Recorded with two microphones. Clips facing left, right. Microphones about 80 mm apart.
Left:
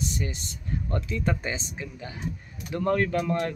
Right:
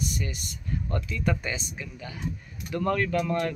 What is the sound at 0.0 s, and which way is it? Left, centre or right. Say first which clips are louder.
Speech: left 1 dB; left.